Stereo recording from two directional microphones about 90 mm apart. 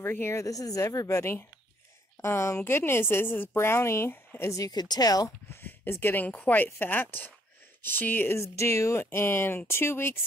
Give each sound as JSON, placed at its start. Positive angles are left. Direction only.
{"t": 0.0, "sound": "a woman's voice", "side_deg": 25}
{"t": 5.5, "sound": "a woman's voice", "side_deg": 25}
{"t": 8.4, "sound": "a woman's voice", "side_deg": 30}